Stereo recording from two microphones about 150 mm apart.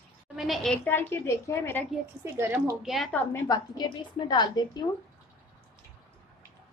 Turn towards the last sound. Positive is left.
turn(degrees=30)  # may be behind; listen again after turning